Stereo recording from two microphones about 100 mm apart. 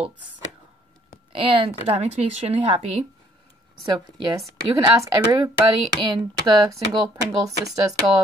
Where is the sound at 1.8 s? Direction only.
90° right.